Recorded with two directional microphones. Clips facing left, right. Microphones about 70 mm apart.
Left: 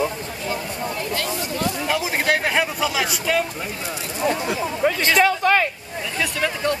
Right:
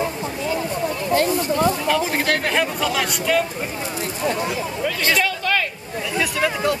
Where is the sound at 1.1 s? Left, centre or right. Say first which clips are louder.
Right 11 dB; right.